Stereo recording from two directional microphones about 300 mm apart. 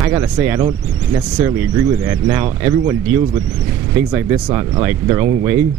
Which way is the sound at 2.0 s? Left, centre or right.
Centre.